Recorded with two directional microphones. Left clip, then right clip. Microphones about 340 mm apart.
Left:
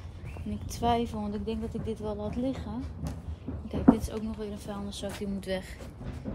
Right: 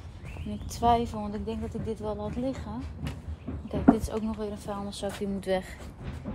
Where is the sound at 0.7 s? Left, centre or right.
Centre.